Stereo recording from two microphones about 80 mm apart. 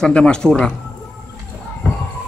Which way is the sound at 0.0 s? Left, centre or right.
Centre.